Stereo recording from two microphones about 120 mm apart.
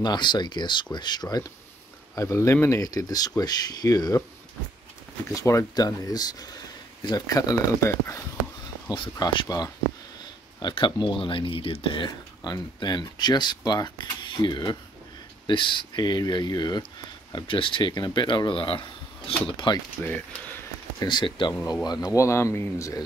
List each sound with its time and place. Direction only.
0.0 s speech: 35° left (ahead or behind)
2.1 s speech: 25° left (ahead or behind)
5.3 s speech: 25° left (ahead or behind)
8.8 s speech: 40° left (ahead or behind)
10.6 s speech: 40° left (ahead or behind)
21.0 s speech: 40° left (ahead or behind); by 23.0 s 25° left (ahead or behind)